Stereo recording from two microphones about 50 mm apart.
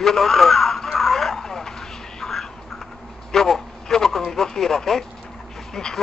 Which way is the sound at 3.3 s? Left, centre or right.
Centre.